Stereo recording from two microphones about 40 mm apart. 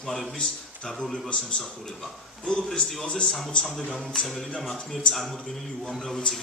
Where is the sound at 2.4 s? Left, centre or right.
Left.